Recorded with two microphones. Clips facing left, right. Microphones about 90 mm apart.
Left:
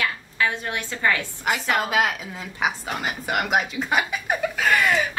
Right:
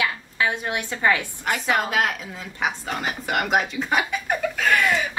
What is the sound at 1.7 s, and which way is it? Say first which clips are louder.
A woman's voice: even; centre (ahead or behind).